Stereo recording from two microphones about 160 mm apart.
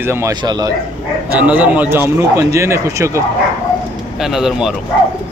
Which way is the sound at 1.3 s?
10° right (ahead or behind).